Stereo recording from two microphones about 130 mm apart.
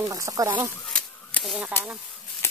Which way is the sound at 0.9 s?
5° left (ahead or behind).